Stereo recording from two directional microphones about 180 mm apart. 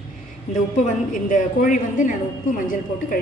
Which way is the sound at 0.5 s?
40° left (ahead or behind).